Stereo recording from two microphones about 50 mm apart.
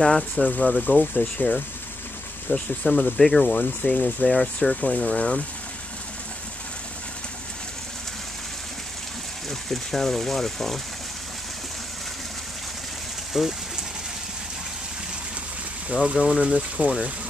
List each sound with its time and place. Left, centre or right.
0.0 s speech: centre
0.8 s speech: left
2.5 s speech: centre
3.2 s speech: centre
3.5 s speech: left
9.5 s speech: centre
13.3 s speech: centre
15.9 s speech: centre